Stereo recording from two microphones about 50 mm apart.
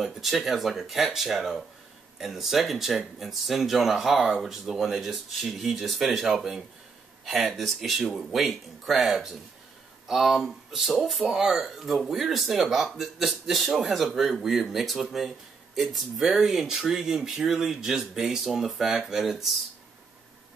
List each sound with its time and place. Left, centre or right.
0.0 s speech: centre